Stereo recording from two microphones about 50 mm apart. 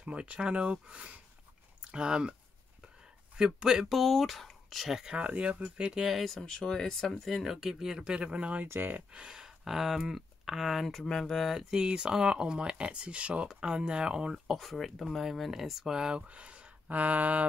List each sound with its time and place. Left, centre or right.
0.0 s speech: right
3.3 s speech: centre
3.9 s speech: centre
5.1 s speech: right
5.9 s speech: centre
7.2 s speech: centre; by 8.6 s right
8.6 s speech: right
9.1 s speech: centre
11.7 s speech: centre
16.3 s speech: right